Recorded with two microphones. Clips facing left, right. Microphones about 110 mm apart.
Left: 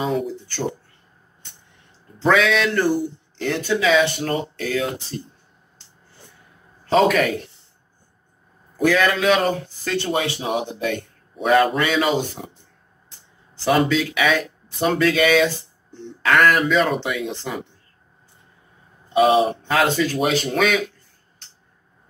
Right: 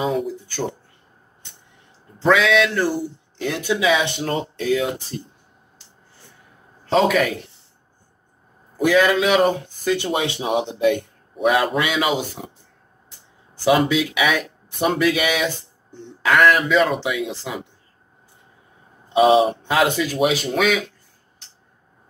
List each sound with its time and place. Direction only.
2.2 s speech: centre (ahead or behind); by 4.8 s 20° right (ahead or behind)
6.9 s a man's voice: centre (ahead or behind)
8.8 s speech: 15° right (ahead or behind)
11.4 s a man's voice: 5° right (ahead or behind)
13.7 s speech: 10° right (ahead or behind)
19.1 s speech: 20° right (ahead or behind); by 20.8 s centre (ahead or behind)